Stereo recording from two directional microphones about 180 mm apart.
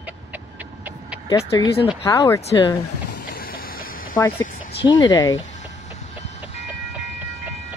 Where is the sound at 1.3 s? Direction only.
20° left (ahead or behind).